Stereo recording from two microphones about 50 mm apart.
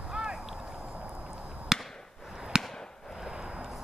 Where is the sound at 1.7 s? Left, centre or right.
Centre.